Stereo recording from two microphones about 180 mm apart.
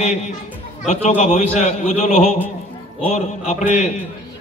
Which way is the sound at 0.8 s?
40° left (ahead or behind).